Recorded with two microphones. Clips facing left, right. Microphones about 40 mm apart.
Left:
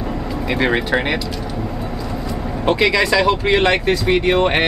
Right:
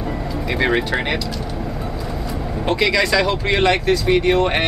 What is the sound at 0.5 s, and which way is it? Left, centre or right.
Speech, centre.